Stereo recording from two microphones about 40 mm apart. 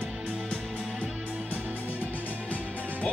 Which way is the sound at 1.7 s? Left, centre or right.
Left.